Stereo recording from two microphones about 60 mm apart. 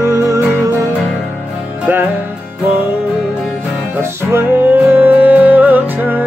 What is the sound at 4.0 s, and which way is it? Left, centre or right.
Music, right.